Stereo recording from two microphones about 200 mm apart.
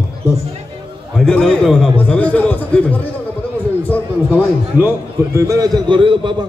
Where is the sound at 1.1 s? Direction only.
Centre (ahead or behind).